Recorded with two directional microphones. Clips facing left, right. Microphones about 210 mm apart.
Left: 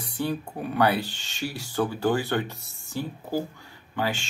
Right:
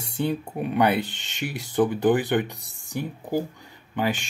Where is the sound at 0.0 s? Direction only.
20° right (ahead or behind).